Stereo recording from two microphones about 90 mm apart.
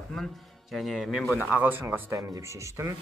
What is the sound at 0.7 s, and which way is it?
Speech, centre (ahead or behind).